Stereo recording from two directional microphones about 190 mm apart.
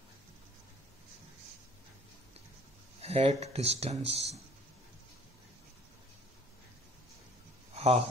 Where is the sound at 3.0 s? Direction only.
30° right (ahead or behind).